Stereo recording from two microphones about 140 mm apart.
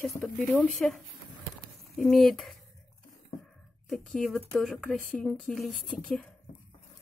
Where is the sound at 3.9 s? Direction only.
Centre (ahead or behind).